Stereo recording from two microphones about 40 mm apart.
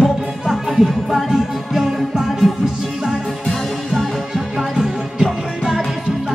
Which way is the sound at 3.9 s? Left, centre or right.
Centre.